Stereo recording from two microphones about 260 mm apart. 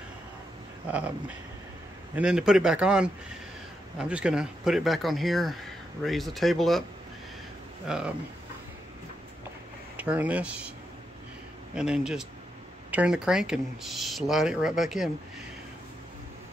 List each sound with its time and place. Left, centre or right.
0.8 s speech: centre
2.1 s speech: centre
7.9 s speech: centre
9.9 s speech: centre
11.7 s speech: centre